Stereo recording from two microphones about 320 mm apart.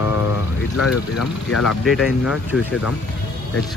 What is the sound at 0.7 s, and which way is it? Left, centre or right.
Speech, left.